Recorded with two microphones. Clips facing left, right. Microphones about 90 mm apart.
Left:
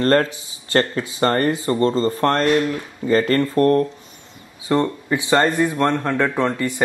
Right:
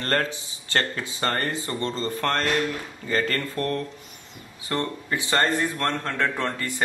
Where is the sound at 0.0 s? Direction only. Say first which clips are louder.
Left 9 dB; 35° left (ahead or behind).